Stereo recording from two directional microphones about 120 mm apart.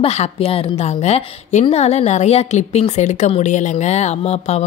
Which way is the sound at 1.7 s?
65° left (ahead or behind).